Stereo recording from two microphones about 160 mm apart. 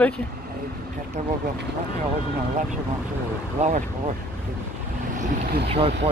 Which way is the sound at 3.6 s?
50° right (ahead or behind).